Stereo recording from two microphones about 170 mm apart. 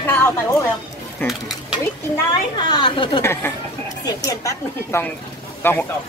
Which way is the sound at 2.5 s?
25° left (ahead or behind).